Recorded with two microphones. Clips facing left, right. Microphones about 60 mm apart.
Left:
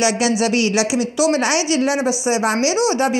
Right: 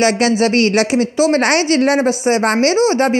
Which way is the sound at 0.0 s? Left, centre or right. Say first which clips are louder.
Right 4 dB; right.